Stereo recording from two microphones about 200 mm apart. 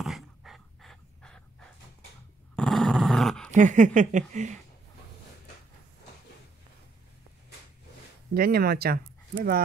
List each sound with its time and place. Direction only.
0.0 s a sound: centre (ahead or behind)
2.5 s dog: centre (ahead or behind)
3.5 s speech: 40° right (ahead or behind)
8.4 s speech: 50° right (ahead or behind)